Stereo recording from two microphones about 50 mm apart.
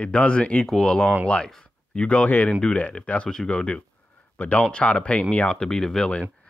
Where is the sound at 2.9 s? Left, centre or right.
Left.